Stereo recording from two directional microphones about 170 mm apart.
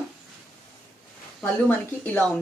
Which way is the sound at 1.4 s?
15° left (ahead or behind).